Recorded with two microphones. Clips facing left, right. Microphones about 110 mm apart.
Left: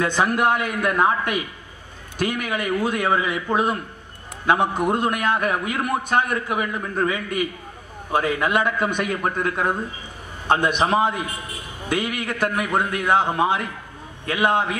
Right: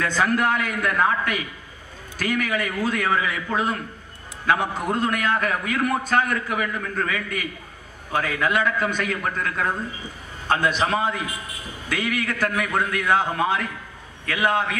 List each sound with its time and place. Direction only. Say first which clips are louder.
0.0 s a man's voice: left 2 dB; 20° left (ahead or behind)
10.8 s a man's voice: left 3 dB; 20° left (ahead or behind)